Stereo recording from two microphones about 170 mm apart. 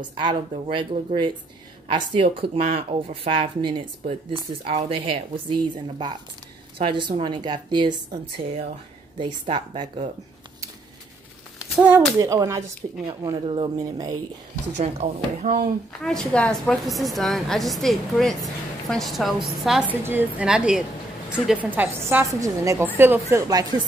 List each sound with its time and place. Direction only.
0.0 s a woman's voice: 30° right (ahead or behind)
11.7 s speech: 5° right (ahead or behind)
12.2 s a woman's voice: 20° right (ahead or behind)
14.8 s speech: 45° right (ahead or behind)
16.0 s a woman's voice: 5° left (ahead or behind); by 23.7 s 20° right (ahead or behind)